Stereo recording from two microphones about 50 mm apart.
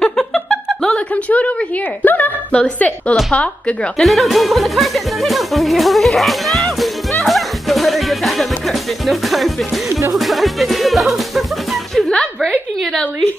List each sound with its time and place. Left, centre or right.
0.0 s a sound: centre
0.9 s a sound: left
2.5 s speech: left
4.0 s speech: centre
7.2 s music: centre
12.4 s a woman's voice: centre